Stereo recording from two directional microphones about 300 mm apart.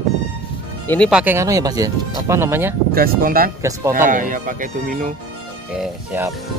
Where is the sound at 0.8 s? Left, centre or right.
Centre.